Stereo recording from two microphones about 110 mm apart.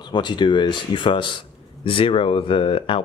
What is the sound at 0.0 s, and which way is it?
Speech, 45° left (ahead or behind).